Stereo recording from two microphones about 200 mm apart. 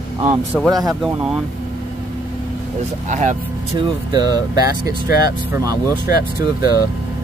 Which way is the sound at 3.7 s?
20° right (ahead or behind).